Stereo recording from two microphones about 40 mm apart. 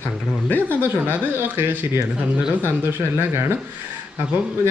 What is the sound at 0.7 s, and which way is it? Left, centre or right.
Speech, right.